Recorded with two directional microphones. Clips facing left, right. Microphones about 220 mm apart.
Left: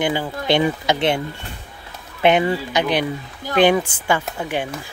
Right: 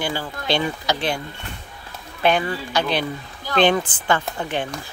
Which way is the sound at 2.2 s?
20° left (ahead or behind).